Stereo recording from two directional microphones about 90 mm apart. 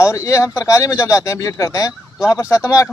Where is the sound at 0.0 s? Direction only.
35° left (ahead or behind).